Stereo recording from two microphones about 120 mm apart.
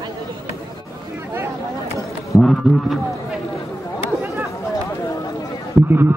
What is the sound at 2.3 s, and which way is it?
Speech, centre (ahead or behind).